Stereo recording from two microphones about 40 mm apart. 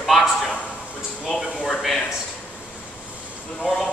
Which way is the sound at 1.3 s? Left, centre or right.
Centre.